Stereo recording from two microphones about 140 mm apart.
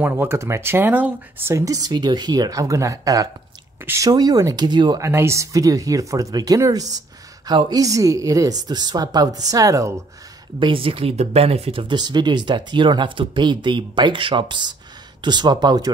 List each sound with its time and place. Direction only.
0.0 s speech: 15° right (ahead or behind)
10.6 s speech: 40° right (ahead or behind)
11.9 s speech: 30° right (ahead or behind)